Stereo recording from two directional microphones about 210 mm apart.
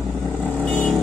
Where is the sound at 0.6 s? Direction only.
Centre (ahead or behind).